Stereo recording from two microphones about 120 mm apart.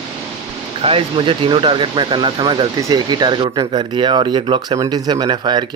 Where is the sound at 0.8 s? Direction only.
50° right (ahead or behind).